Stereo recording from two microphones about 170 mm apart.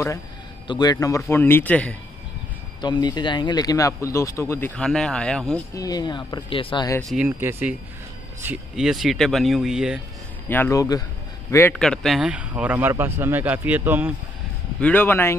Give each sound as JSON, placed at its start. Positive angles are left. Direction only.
{"t": 0.7, "sound": "speech", "side_deg": 25}
{"t": 2.8, "sound": "speech", "side_deg": 25}
{"t": 5.8, "sound": "speech", "side_deg": 20}
{"t": 7.2, "sound": "speech", "side_deg": -10}
{"t": 10.5, "sound": "speech", "side_deg": 15}
{"t": 11.7, "sound": "speech", "side_deg": 5}
{"t": 14.8, "sound": "speech", "side_deg": 10}